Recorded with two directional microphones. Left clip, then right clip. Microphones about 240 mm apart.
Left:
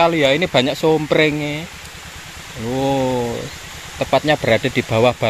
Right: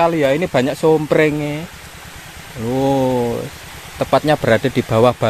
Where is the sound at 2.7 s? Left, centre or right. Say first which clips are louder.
Right 2 dB; centre.